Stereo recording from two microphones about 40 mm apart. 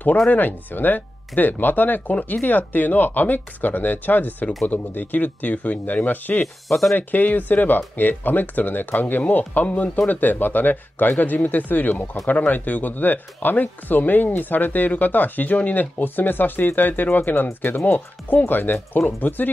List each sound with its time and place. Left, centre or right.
0.3 s speech: left
6.4 s speech: centre
7.0 s speech: left
17.7 s speech: left
18.4 s speech: left